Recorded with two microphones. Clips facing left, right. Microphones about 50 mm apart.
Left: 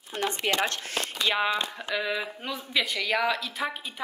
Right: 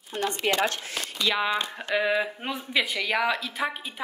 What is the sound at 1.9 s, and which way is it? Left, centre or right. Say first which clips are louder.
A woman's voice: right 6 dB; centre.